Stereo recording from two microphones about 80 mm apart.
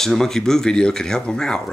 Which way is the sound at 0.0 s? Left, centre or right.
Centre.